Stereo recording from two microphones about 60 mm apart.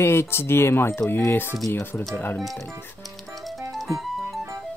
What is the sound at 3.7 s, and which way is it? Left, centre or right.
Music, centre.